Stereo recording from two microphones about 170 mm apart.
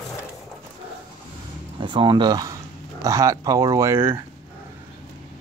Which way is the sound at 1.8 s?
30° right (ahead or behind).